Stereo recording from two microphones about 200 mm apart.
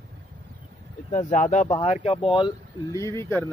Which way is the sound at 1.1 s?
40° left (ahead or behind).